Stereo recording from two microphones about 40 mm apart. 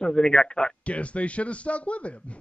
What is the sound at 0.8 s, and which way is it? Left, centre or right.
Speech, left.